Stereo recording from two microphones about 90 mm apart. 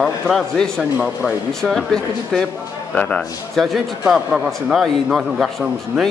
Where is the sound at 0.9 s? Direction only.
5° right (ahead or behind).